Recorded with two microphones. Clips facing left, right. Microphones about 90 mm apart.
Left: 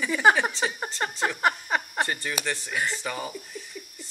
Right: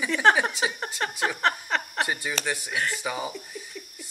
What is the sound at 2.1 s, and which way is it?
Speech, 10° right (ahead or behind).